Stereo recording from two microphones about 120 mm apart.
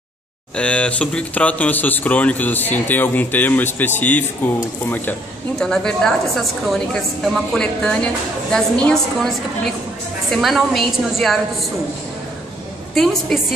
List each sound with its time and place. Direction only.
0.6 s speech: 10° left (ahead or behind)
5.6 s a woman's voice: 5° left (ahead or behind)
10.3 s a woman's voice: centre (ahead or behind)
12.9 s a woman's voice: centre (ahead or behind)